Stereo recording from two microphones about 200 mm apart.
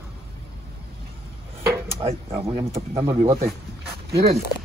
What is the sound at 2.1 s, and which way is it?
Speech, 30° right (ahead or behind).